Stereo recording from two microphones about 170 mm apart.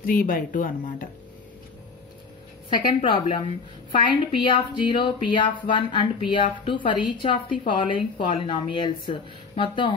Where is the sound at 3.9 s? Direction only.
30° left (ahead or behind).